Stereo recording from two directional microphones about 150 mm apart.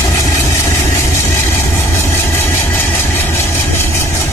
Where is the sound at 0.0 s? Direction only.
20° left (ahead or behind).